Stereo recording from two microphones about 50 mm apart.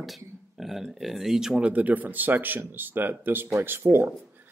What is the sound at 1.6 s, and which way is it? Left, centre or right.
Speech, right.